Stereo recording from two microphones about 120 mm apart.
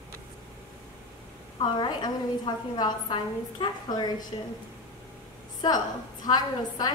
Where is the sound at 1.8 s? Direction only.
35° left (ahead or behind).